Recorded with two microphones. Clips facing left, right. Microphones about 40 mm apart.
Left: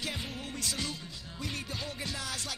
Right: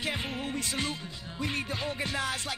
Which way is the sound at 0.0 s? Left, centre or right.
Right.